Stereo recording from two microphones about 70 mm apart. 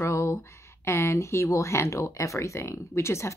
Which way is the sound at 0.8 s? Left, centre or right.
Left.